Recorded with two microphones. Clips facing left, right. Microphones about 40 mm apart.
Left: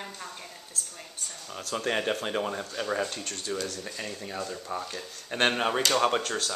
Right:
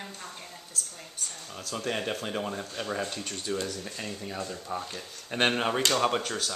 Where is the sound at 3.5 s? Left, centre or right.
Centre.